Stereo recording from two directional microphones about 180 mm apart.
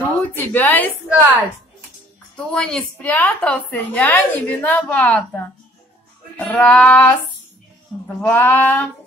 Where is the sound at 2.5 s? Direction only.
5° left (ahead or behind).